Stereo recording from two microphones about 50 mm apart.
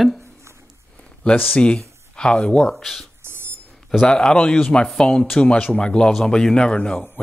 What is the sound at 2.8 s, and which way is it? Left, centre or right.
Speech, centre.